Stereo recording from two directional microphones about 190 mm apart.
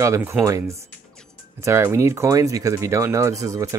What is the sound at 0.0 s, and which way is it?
Speech, 15° right (ahead or behind).